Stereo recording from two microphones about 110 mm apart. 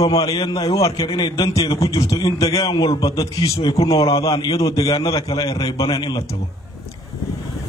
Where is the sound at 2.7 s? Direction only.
50° left (ahead or behind).